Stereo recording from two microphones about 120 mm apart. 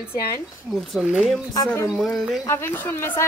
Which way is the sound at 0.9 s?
5° right (ahead or behind).